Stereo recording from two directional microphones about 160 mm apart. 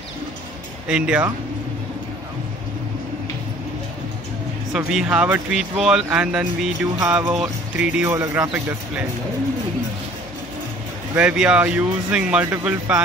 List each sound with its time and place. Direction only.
0.8 s speech: 5° right (ahead or behind)
4.7 s speech: 5° right (ahead or behind)
11.1 s speech: 10° right (ahead or behind)